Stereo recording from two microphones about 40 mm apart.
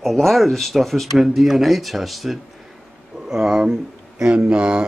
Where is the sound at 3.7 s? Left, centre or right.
Right.